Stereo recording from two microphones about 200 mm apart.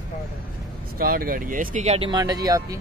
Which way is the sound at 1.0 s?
45° right (ahead or behind).